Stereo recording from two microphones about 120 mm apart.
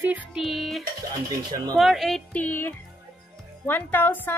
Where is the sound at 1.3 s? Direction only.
30° right (ahead or behind).